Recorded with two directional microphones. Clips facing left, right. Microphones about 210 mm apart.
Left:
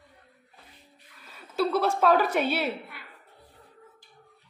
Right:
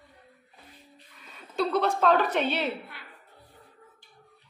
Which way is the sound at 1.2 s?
5° left (ahead or behind).